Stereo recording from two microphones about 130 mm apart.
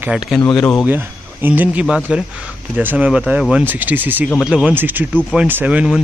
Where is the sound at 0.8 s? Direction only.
15° right (ahead or behind).